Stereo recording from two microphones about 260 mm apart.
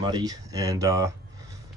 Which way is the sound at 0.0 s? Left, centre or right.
Centre.